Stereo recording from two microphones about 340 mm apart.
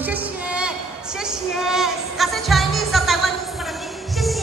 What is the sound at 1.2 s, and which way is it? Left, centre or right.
Music, centre.